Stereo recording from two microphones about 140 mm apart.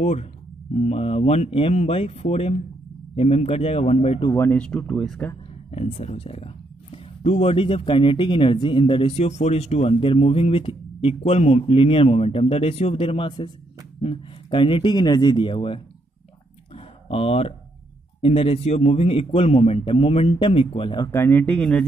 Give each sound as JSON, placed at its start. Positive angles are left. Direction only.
{"t": 0.0, "sound": "speech", "side_deg": 50}
{"t": 4.4, "sound": "speech", "side_deg": 10}
{"t": 5.9, "sound": "speech", "side_deg": 45}
{"t": 16.7, "sound": "a sound", "side_deg": 45}
{"t": 18.2, "sound": "speech", "side_deg": 45}
{"t": 21.1, "sound": "speech", "side_deg": 15}